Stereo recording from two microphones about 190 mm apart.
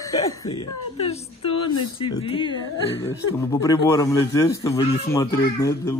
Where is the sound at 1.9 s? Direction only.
25° left (ahead or behind).